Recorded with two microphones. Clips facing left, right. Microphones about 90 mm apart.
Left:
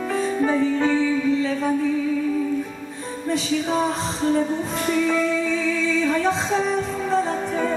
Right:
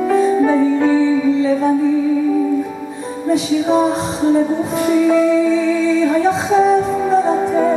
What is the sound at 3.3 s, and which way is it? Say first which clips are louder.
Music: right 8 dB; 10° right (ahead or behind).